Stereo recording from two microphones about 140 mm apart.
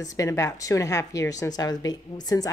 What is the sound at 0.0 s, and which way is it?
A woman's voice, 25° left (ahead or behind).